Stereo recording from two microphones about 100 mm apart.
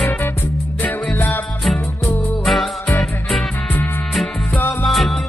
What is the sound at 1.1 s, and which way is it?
Music, 25° left (ahead or behind).